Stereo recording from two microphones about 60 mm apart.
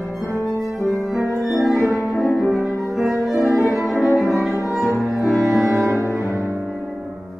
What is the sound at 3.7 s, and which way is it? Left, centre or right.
Music, centre.